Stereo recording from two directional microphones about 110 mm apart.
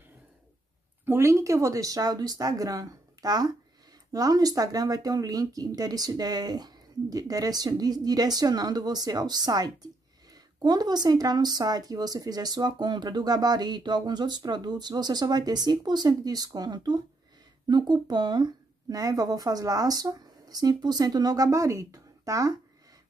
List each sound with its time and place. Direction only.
1.0 s speech: 25° right (ahead or behind)